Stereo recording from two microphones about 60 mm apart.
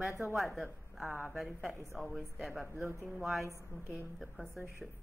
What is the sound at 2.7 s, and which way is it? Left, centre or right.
Speech, right.